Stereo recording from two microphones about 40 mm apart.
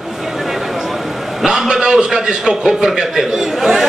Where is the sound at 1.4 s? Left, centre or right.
Centre.